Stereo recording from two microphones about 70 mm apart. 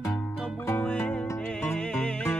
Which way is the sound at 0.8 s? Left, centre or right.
Left.